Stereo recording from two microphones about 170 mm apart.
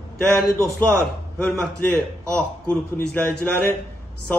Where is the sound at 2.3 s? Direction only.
5° left (ahead or behind).